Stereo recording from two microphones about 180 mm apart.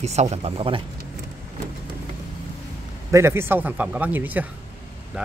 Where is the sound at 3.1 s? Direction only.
15° right (ahead or behind).